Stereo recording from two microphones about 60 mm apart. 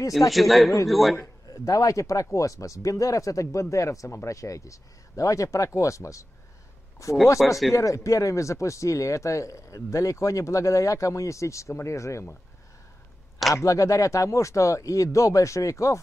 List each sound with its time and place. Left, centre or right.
0.3 s speech: centre
1.5 s speech: left
7.3 s speech: centre
7.7 s speech: left
13.6 s speech: left